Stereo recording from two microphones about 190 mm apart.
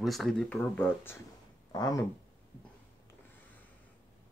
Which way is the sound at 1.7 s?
20° left (ahead or behind).